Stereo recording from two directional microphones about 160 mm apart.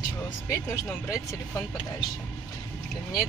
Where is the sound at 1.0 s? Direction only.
20° left (ahead or behind).